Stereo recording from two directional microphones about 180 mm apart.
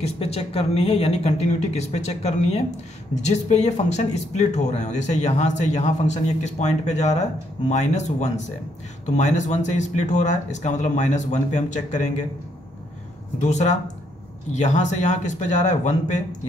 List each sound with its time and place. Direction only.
0.0 s speech: 35° left (ahead or behind)
13.4 s speech: 40° left (ahead or behind)